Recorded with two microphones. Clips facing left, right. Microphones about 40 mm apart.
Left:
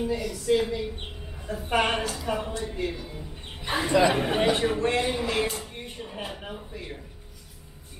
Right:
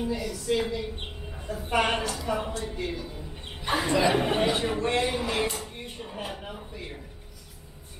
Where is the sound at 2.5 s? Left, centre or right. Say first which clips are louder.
Left 2 dB; centre.